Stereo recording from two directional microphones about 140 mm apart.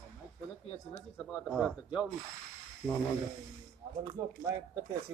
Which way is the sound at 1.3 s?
Centre (ahead or behind).